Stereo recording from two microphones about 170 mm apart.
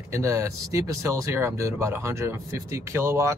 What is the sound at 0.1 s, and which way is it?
Speech, 15° right (ahead or behind).